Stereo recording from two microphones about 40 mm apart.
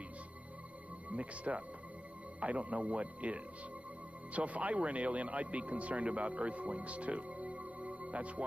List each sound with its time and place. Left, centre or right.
1.1 s speech: right